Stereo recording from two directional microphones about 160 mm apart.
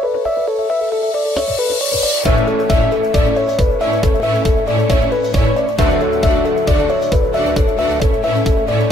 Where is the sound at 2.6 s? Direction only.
Centre (ahead or behind).